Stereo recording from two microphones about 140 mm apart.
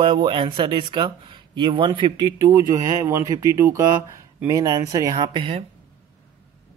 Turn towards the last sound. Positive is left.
turn(degrees=-40)  # may be behind; listen again after turning